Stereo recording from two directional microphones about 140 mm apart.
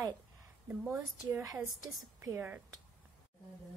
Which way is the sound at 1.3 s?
20° right (ahead or behind).